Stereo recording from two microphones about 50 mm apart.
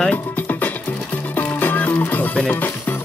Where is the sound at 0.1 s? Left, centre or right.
Left.